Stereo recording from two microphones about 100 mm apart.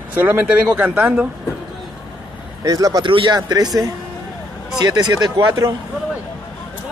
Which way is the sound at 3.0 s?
55° right (ahead or behind).